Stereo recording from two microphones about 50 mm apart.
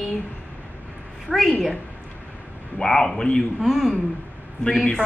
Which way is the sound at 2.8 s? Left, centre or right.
Centre.